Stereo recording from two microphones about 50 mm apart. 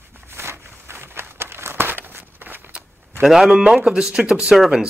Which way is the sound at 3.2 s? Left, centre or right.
Centre.